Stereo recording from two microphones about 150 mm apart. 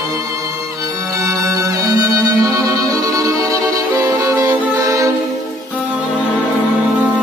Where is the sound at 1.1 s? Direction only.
25° right (ahead or behind).